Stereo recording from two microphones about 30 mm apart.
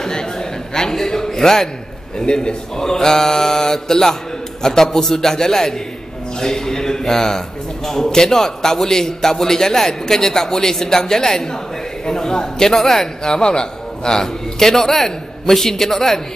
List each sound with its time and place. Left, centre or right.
0.0 s a man's voice: left
2.1 s a man's voice: left
2.8 s a man's voice: centre
12.7 s a man's voice: centre
13.2 s a man's voice: left
14.1 s a man's voice: centre